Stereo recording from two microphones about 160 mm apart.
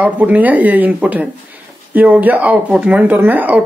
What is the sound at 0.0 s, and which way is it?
Speech, 10° right (ahead or behind).